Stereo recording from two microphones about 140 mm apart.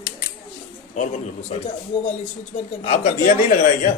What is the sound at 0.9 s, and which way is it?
Speech, 55° left (ahead or behind).